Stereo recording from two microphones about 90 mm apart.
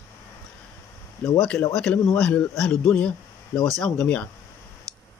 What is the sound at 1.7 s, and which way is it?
Speech, 5° left (ahead or behind).